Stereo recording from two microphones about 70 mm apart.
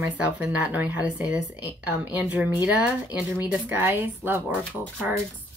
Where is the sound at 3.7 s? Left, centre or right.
Right.